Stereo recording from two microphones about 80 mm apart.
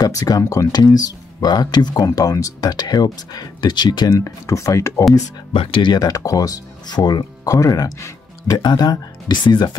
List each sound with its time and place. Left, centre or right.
0.0 s speech: left
0.4 s speech: left
0.7 s speech: left
4.2 s speech: left
5.7 s speech: left
8.5 s speech: left